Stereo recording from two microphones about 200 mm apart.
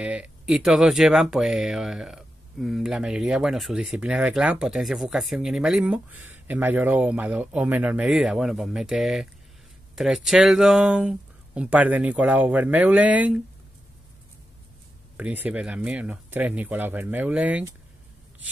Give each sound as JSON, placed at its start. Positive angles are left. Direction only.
{"t": 0.0, "sound": "speech", "side_deg": -5}
{"t": 15.1, "sound": "speech", "side_deg": -5}